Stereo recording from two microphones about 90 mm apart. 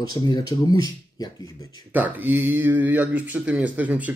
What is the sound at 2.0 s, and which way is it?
Speech, 20° right (ahead or behind).